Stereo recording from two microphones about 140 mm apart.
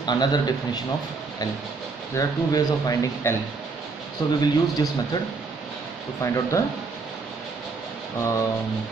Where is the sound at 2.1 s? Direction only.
25° left (ahead or behind).